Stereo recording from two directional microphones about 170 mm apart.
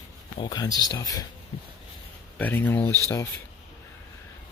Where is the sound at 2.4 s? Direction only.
10° left (ahead or behind).